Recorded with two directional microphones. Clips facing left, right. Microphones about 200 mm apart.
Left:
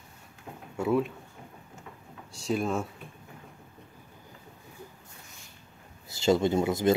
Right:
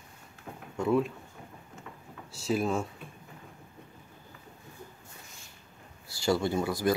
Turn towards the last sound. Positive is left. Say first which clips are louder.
# left 4 dB
turn(degrees=25)  # may be behind; listen again after turning